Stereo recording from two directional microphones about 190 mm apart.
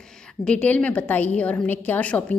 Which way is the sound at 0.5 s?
5° left (ahead or behind).